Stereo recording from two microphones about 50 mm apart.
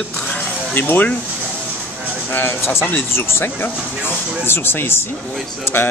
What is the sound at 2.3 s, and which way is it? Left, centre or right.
Speech, left.